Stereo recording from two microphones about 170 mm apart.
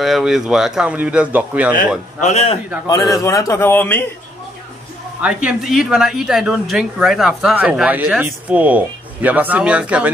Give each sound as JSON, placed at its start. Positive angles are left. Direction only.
{"t": 0.0, "sound": "speech", "side_deg": 0}
{"t": 2.2, "sound": "a man's voice", "side_deg": 35}
{"t": 2.9, "sound": "a man's voice", "side_deg": 20}
{"t": 5.2, "sound": "speech", "side_deg": -5}